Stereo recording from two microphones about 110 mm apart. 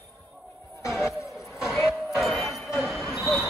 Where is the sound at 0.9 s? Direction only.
5° right (ahead or behind).